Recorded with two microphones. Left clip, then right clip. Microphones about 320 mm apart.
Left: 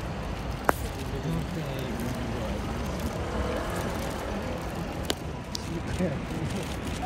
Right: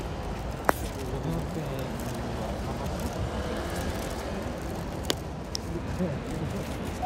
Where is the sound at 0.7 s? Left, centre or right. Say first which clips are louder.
Even; centre.